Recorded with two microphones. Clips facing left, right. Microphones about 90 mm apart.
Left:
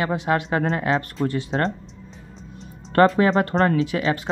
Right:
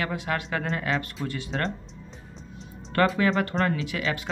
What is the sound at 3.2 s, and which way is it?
Speech, 35° left (ahead or behind).